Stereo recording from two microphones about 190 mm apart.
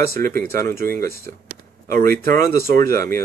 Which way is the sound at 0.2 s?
50° right (ahead or behind).